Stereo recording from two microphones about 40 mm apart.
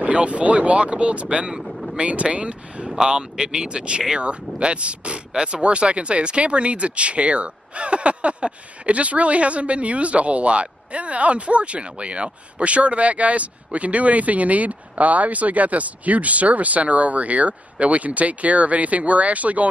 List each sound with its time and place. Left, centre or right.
0.0 s speech: right
1.6 s vehicle: centre
2.0 s speech: right